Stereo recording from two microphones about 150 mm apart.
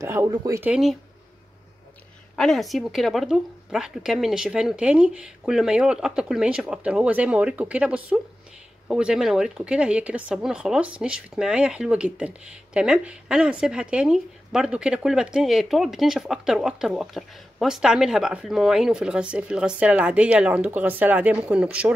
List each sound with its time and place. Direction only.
0.0 s speech: 20° right (ahead or behind)
0.6 s speech: 5° right (ahead or behind)
2.3 s speech: centre (ahead or behind)